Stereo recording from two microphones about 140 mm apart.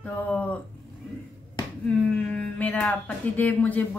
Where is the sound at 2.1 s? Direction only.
10° left (ahead or behind).